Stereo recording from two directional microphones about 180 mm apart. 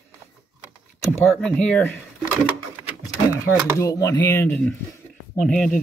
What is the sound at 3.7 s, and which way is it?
Speech, 15° left (ahead or behind).